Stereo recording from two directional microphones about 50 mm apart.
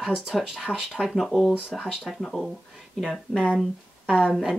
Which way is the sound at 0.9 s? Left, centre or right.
Centre.